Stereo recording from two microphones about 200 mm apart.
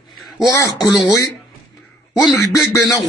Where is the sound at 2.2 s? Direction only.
15° left (ahead or behind).